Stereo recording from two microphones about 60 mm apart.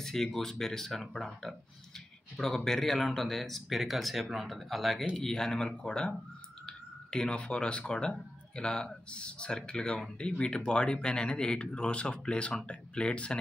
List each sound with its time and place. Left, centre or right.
0.0 s speech: centre